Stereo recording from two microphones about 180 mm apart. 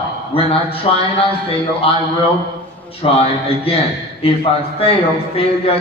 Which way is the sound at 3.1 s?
35° left (ahead or behind).